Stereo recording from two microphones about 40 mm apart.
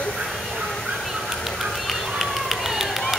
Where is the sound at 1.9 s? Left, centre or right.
Centre.